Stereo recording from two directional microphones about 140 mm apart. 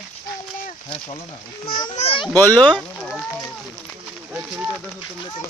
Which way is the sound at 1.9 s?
45° left (ahead or behind).